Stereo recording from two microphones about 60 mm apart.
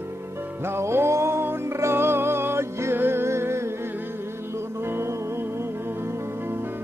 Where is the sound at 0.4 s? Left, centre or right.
Right.